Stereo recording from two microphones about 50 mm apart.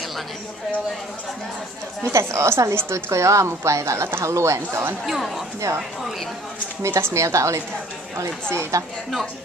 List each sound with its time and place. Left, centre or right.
2.0 s a woman's voice: right
5.0 s speech: centre
6.8 s a woman's voice: right
8.5 s speech: right